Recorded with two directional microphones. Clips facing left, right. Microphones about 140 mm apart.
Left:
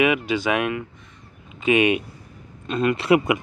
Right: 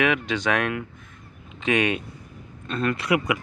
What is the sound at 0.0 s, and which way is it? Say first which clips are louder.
Speech: left 3 dB; 10° left (ahead or behind).